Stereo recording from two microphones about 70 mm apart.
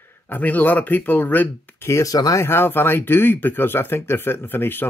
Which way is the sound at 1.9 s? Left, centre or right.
Left.